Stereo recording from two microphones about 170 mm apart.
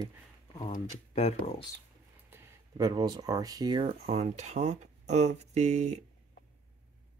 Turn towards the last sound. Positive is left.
turn(degrees=-40)  # may be behind; listen again after turning